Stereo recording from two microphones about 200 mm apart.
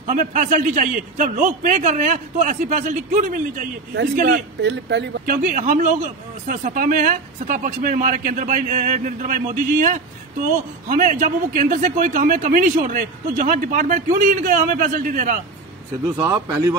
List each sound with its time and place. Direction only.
0.0 s a man's voice: 40° right (ahead or behind)
16.2 s speech: 15° right (ahead or behind)